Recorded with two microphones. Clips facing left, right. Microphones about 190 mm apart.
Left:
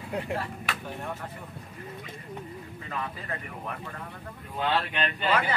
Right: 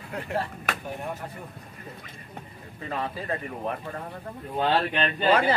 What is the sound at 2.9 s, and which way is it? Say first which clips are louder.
Speech: right 6 dB; 30° right (ahead or behind).